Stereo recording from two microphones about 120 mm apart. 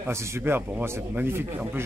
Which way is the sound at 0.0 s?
20° right (ahead or behind).